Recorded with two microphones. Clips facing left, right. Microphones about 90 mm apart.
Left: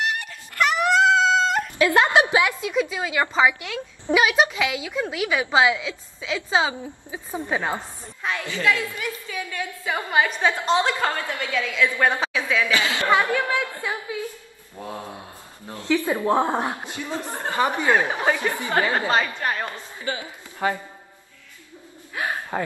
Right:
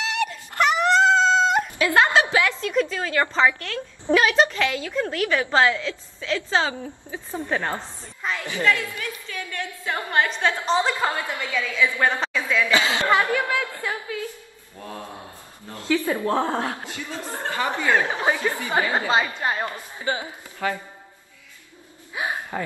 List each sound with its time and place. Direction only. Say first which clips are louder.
0.7 s dog: right 1 dB; 5° left (ahead or behind)
1.8 s a woman's voice: left 2 dB; 20° left (ahead or behind); by 8.5 s 5° left (ahead or behind)
8.6 s a woman's voice: even; 15° left (ahead or behind)
12.7 s a woman's voice: right 2 dB; 20° right (ahead or behind)
13.5 s a woman's voice: left 1 dB; 15° left (ahead or behind)
15.9 s a woman's voice: left 1 dB; 20° left (ahead or behind)
18.2 s a woman's voice: even; 20° right (ahead or behind)
20.6 s a man's voice: left 2 dB; 30° left (ahead or behind)
22.1 s speech: even; 15° right (ahead or behind)